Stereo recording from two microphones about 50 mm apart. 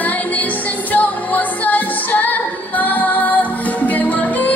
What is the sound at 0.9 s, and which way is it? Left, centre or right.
Music, left.